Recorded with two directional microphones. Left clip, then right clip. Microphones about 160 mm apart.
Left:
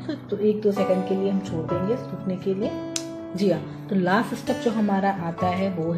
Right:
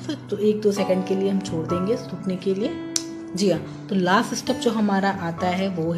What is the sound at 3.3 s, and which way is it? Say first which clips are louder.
A woman's voice: right 1 dB; 15° right (ahead or behind).